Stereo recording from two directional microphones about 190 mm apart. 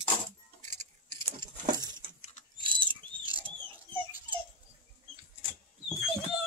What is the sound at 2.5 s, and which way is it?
Rodents, 25° right (ahead or behind).